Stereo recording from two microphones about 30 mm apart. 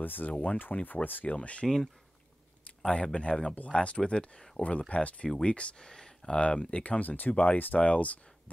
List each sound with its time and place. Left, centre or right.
0.0 s speech: left
0.4 s speech: left
1.0 s speech: left
1.3 s speech: left
2.9 s speech: left
5.8 s a sound: left
6.3 s speech: left
6.8 s speech: left
7.5 s speech: left
7.8 s speech: left